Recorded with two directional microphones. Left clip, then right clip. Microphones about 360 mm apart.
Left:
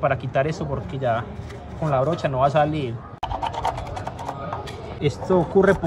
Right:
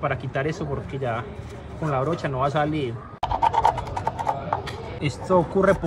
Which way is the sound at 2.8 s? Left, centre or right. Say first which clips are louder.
Right 1 dB; centre.